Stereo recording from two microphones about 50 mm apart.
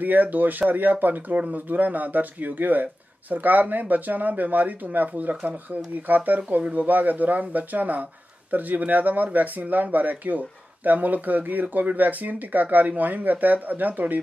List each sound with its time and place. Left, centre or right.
0.0 s speech: right
5.3 s speech: right
6.0 s speech: right